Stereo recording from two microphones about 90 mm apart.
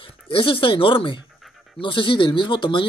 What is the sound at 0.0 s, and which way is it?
Speech, 70° left (ahead or behind).